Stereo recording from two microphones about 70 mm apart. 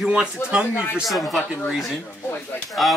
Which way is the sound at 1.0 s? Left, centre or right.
Centre.